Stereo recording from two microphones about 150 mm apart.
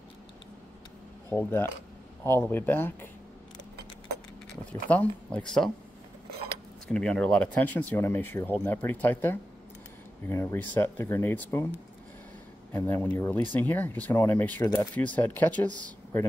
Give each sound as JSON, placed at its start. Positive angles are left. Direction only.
{"t": 1.3, "sound": "speech", "side_deg": 15}
{"t": 4.8, "sound": "speech", "side_deg": 10}
{"t": 6.9, "sound": "speech", "side_deg": 5}
{"t": 12.7, "sound": "speech", "side_deg": 15}